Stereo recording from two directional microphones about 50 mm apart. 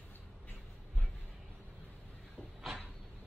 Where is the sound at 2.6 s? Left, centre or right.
Centre.